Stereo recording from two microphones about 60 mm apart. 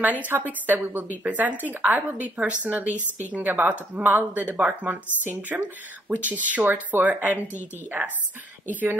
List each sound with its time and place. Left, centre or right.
0.0 s speech: right